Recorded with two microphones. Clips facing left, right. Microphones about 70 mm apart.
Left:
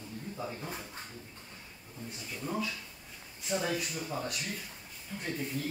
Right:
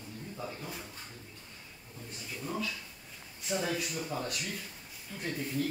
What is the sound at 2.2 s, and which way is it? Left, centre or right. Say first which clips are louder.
Speech: left 1 dB; centre.